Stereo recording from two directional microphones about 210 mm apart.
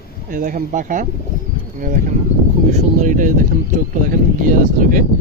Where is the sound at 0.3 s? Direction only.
40° right (ahead or behind).